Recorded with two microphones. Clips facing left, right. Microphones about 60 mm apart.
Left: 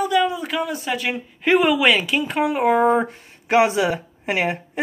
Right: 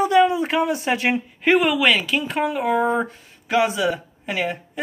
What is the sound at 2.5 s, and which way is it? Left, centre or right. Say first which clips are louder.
Speech: left 5 dB; left.